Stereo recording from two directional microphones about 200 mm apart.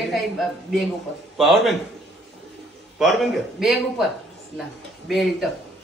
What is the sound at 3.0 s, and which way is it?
Speech, centre (ahead or behind).